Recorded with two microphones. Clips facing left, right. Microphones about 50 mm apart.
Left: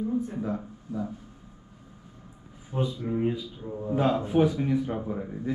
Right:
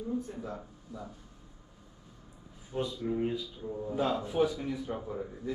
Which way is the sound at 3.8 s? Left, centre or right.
Left.